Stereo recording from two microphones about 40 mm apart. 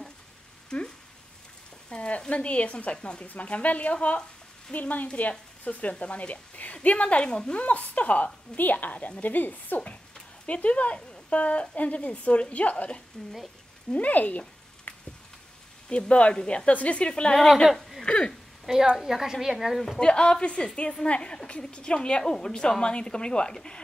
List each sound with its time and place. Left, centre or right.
0.7 s speech: left
7.2 s a woman's voice: centre
7.5 s a woman's voice: left
10.4 s a woman's voice: left
13.9 s speech: left
15.9 s a woman's voice: left
18.0 s a sound: left
18.7 s a woman's voice: centre
20.0 s a woman's voice: left